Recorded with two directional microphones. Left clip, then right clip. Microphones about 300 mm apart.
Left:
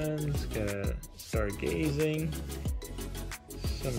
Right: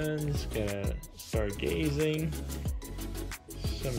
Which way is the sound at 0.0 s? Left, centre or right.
Centre.